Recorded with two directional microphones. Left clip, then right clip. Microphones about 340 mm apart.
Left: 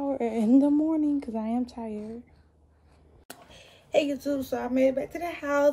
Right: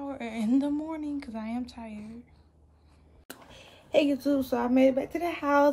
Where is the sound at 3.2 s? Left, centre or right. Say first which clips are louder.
Even; centre.